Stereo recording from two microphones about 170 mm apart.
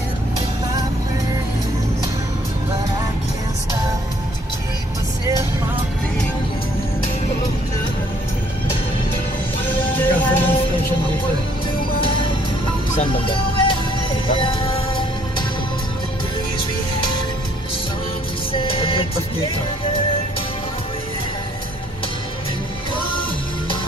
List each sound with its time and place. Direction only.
9.8 s music: 10° left (ahead or behind)
13.0 s music: 30° left (ahead or behind)
18.5 s music: 35° left (ahead or behind)